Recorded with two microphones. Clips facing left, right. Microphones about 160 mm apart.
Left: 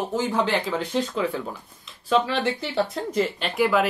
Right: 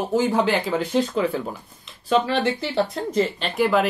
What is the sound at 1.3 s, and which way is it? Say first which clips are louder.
Speech: right 3 dB; 30° right (ahead or behind).